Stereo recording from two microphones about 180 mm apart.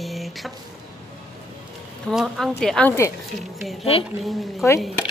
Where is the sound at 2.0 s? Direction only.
Centre (ahead or behind).